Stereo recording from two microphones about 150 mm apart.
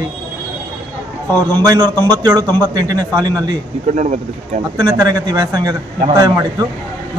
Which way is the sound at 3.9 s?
55° right (ahead or behind).